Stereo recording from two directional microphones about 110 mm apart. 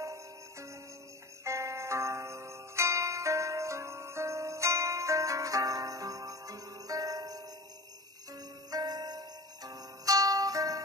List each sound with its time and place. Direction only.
0.0 s music: 25° right (ahead or behind)